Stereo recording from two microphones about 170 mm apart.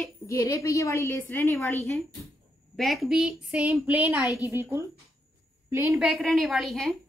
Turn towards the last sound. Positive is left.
turn(degrees=0)  # may be behind; listen again after turning